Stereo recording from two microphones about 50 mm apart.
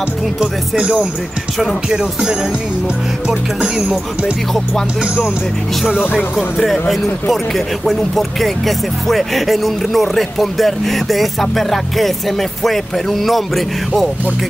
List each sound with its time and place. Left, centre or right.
0.4 s speech: centre
6.3 s speech: centre